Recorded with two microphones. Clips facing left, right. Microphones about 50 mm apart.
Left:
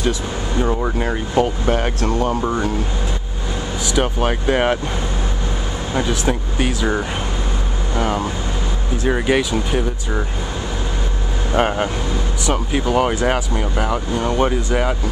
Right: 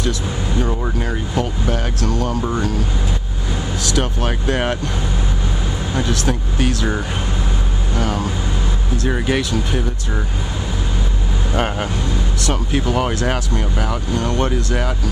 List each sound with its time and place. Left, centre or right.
0.6 s speech: centre
0.9 s speech: left
3.8 s speech: centre
5.9 s speech: centre
11.5 s speech: centre